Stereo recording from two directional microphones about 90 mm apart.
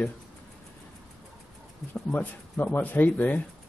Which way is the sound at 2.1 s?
20° left (ahead or behind).